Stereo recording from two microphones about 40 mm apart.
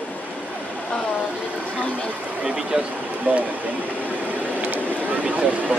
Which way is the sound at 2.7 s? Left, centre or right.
Right.